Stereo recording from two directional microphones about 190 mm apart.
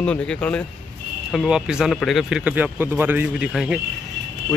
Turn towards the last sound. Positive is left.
turn(degrees=-5)  # may be behind; listen again after turning